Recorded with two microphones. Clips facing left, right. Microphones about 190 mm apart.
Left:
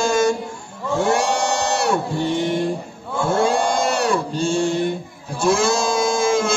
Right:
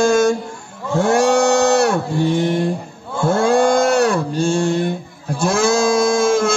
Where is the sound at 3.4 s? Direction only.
50° right (ahead or behind).